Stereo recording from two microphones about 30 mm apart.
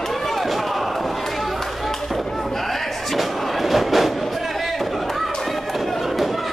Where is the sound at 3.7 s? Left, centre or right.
Centre.